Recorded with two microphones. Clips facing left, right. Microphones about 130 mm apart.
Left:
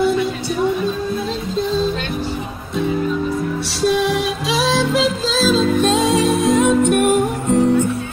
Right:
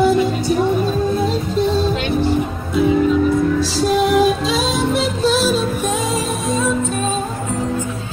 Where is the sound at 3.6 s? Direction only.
85° left.